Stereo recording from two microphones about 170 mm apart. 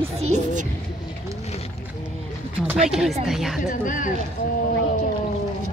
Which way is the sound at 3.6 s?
50° left (ahead or behind).